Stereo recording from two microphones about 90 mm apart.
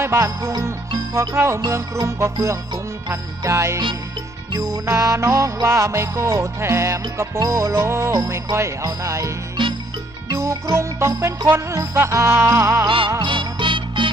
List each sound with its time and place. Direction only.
0.0 s music: 30° right (ahead or behind)
2.0 s jingle bell: 30° right (ahead or behind)
3.1 s music: 30° right (ahead or behind)
4.8 s jingle bell: 35° right (ahead or behind)
10.3 s jingle bell: 35° right (ahead or behind)
12.8 s music: 70° right (ahead or behind)